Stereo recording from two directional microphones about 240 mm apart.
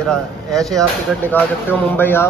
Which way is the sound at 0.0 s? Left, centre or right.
Centre.